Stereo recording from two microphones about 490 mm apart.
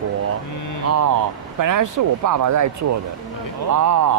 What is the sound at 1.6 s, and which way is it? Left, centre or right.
Speech, right.